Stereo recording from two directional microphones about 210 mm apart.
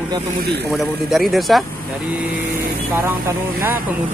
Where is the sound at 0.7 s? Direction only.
Centre (ahead or behind).